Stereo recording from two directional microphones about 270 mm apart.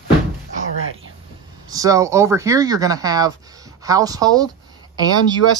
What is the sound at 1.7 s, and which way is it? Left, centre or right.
Speech, centre.